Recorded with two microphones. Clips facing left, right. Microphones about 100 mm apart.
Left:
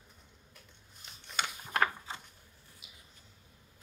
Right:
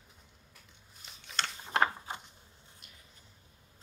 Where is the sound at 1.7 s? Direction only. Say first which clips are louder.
Right 2 dB; 20° right (ahead or behind).